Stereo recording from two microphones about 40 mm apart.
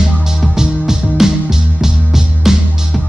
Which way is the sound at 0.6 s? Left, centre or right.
Centre.